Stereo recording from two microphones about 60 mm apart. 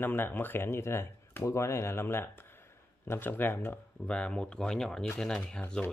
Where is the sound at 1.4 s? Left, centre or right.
Left.